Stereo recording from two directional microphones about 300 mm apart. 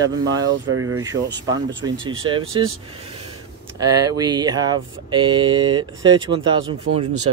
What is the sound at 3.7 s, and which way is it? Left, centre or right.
Speech, centre.